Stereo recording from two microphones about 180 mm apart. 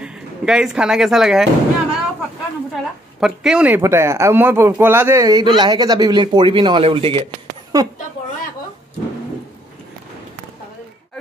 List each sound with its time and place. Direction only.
0.0 s a woman's voice: 5° right (ahead or behind); by 7.2 s 30° right (ahead or behind)